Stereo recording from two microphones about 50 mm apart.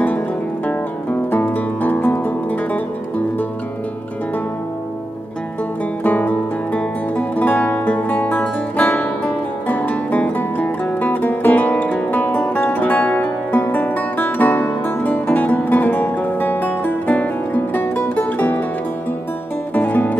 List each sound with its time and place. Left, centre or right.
1.3 s music: left
6.0 s music: left
18.1 s zither: left
19.7 s music: left